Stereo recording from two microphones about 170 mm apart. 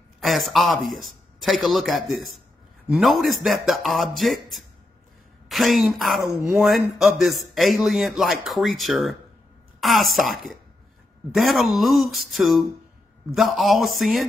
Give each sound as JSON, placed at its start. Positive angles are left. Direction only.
{"t": 0.2, "sound": "speech", "side_deg": 0}